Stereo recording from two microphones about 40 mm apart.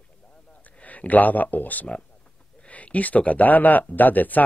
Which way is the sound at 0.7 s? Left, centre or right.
Left.